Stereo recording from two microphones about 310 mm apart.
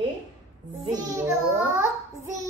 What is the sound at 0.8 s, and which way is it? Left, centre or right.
Speech, centre.